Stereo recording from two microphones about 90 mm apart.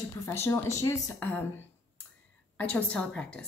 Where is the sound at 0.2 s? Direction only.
30° left (ahead or behind).